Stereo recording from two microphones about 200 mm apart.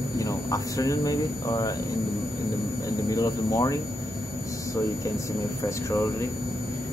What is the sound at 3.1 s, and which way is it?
Speech, 15° left (ahead or behind).